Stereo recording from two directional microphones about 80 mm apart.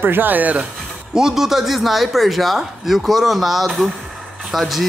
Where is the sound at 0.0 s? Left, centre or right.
Right.